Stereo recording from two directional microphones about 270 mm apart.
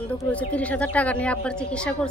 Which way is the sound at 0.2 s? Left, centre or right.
Centre.